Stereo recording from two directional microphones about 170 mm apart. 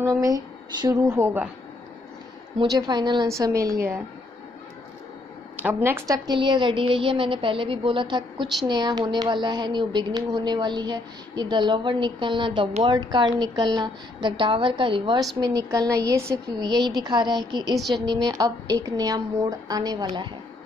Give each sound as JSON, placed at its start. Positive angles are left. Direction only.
{"t": 0.0, "sound": "a woman's voice", "side_deg": -20}
{"t": 2.6, "sound": "a woman's voice", "side_deg": -25}
{"t": 5.6, "sound": "a woman's voice", "side_deg": -10}
{"t": 17.7, "sound": "a woman's voice", "side_deg": 0}
{"t": 18.0, "sound": "a woman's voice", "side_deg": -20}